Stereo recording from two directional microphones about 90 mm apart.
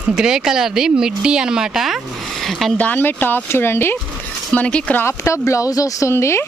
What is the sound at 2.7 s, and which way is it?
Speech, 20° left (ahead or behind).